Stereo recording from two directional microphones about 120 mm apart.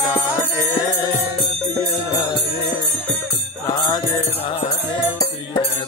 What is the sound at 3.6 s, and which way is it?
Music, 35° left (ahead or behind).